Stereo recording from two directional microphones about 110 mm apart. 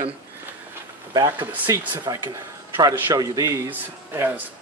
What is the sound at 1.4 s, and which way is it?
Speech, 15° right (ahead or behind).